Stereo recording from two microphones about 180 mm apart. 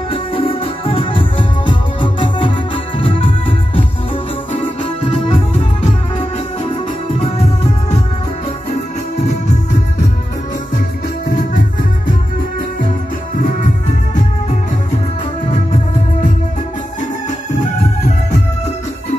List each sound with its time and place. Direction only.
0.1 s music: 30° left (ahead or behind)
6.1 s music: 25° left (ahead or behind)
9.2 s music: 40° left (ahead or behind)
11.2 s music: 50° left (ahead or behind)